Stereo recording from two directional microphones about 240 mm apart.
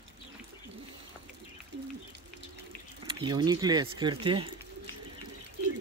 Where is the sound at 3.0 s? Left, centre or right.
Centre.